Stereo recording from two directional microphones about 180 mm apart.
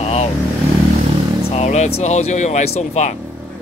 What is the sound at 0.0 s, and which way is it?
Vehicle, 35° left (ahead or behind).